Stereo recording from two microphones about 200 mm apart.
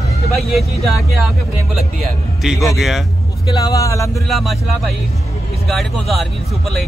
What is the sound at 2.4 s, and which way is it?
Speech, centre (ahead or behind).